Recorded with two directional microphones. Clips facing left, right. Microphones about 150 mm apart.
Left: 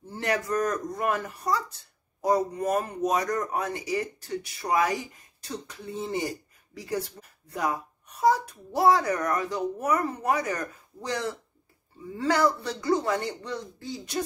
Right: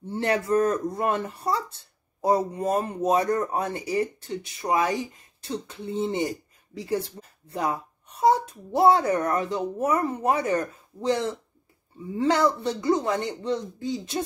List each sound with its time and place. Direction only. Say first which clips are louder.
0.1 s speech: right 4 dB; 30° right (ahead or behind)